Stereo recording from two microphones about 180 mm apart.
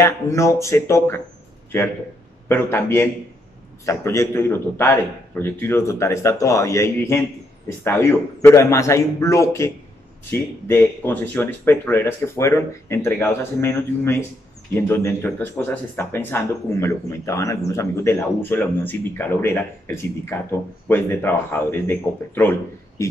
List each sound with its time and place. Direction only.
0.0 s speech: 15° left (ahead or behind)
2.4 s speech: 15° left (ahead or behind)